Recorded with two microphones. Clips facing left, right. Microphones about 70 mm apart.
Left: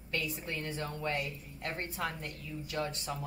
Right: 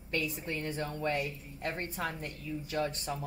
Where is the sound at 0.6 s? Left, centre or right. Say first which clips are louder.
Right 4 dB; right.